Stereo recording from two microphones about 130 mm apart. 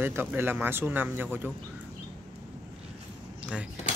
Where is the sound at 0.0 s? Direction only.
15° right (ahead or behind).